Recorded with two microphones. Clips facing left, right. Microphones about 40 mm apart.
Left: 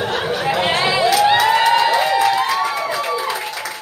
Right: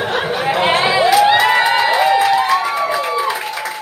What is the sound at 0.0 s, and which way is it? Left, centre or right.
Chatter, right.